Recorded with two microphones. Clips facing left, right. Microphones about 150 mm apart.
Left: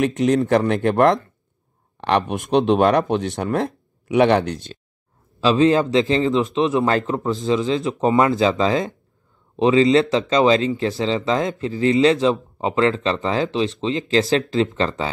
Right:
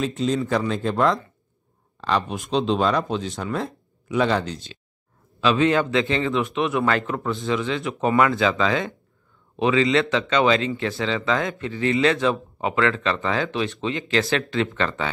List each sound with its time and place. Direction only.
0.0 s speech: 65° left (ahead or behind)
5.4 s a man's voice: 30° left (ahead or behind)